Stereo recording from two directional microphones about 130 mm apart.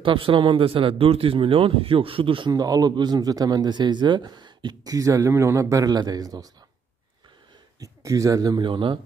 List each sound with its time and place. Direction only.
0.0 s a man's voice: 40° right (ahead or behind)
2.5 s a man's voice: 30° right (ahead or behind)
7.8 s a man's voice: 25° right (ahead or behind)